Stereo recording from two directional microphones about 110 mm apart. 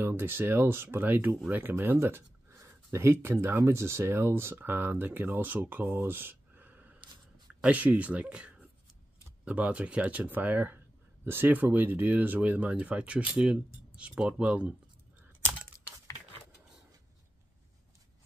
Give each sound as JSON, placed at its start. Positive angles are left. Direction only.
{"t": 0.0, "sound": "speech", "side_deg": -20}